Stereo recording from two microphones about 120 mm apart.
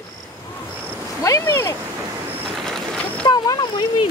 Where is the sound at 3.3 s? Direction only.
35° left (ahead or behind).